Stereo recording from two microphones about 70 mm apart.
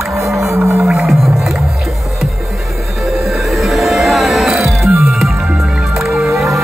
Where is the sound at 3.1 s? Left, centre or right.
Centre.